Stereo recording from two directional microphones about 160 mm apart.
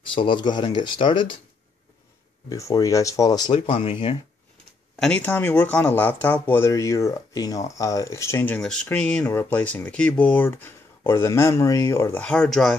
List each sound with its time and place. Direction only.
0.0 s speech: 30° left (ahead or behind)
2.5 s speech: 20° left (ahead or behind)
4.9 s speech: 5° left (ahead or behind)
8.5 s speech: 5° left (ahead or behind)